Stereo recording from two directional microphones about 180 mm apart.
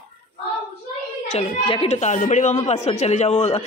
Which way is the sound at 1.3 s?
35° left (ahead or behind).